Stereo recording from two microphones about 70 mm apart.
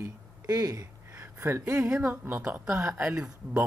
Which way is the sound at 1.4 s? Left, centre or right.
Right.